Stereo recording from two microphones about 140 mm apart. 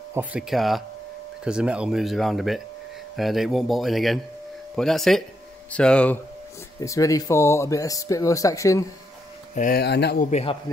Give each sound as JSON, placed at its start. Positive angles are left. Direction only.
{"t": 0.1, "sound": "speech", "side_deg": -10}
{"t": 6.8, "sound": "speech", "side_deg": 25}
{"t": 9.6, "sound": "speech", "side_deg": 55}
{"t": 10.3, "sound": "a man's voice", "side_deg": 40}